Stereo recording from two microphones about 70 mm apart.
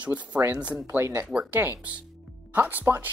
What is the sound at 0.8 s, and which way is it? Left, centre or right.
Speech, right.